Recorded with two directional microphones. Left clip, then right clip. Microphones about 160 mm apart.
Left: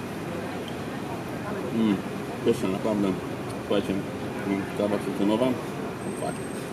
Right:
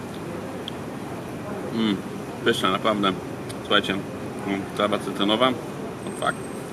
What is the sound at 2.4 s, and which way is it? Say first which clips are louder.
Speech: right 5 dB; 5° left (ahead or behind).